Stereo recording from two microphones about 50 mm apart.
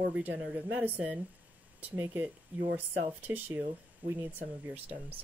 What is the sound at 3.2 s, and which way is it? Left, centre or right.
Speech, right.